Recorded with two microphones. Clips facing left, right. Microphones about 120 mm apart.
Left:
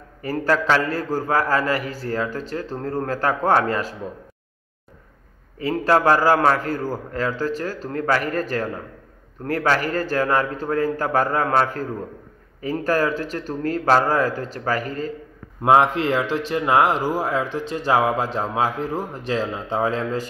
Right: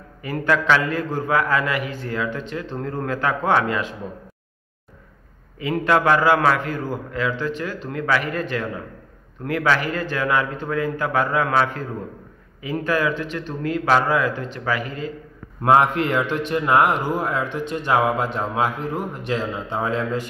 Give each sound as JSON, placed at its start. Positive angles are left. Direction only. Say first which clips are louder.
{"t": 0.2, "sound": "a man's voice", "louder": "even", "side_deg": 35}
{"t": 5.6, "sound": "a man's voice", "louder": "left 1 dB", "side_deg": 35}
{"t": 15.6, "sound": "a man's voice", "louder": "even", "side_deg": 25}
{"t": 19.2, "sound": "a man's voice", "louder": "left 2 dB", "side_deg": 35}